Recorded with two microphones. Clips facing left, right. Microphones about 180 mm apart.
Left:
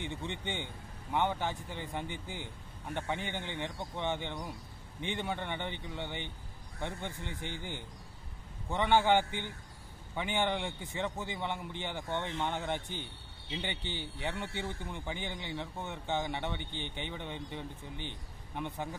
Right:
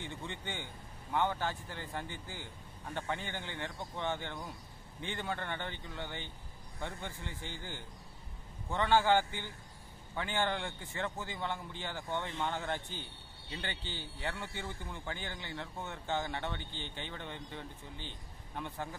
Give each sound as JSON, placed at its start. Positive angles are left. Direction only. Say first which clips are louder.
{"t": 0.0, "sound": "a man's voice", "louder": "left 4 dB", "side_deg": 20}